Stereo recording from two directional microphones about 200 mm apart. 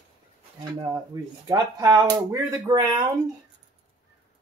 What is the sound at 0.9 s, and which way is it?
Speech, 20° right (ahead or behind).